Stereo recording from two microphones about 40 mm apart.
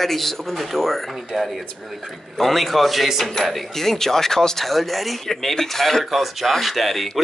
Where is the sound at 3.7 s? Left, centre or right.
Centre.